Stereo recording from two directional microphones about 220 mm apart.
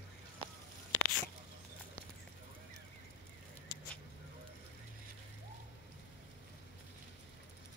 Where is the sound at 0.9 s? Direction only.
60° left (ahead or behind).